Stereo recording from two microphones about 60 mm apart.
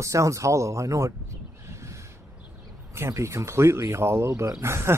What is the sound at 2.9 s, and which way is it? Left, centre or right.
Speech, right.